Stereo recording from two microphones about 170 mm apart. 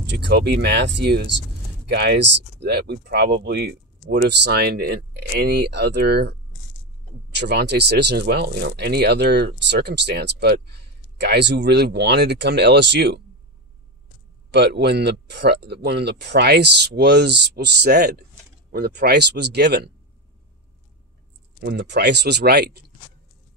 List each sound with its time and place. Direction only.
0.0 s speech: 85° right
7.3 s speech: 80° right
14.5 s speech: 80° right
21.5 s speech: 80° right